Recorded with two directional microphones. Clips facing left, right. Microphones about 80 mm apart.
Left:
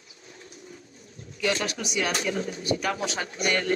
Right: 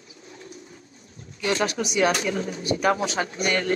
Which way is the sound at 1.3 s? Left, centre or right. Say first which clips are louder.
Right 3 dB; right.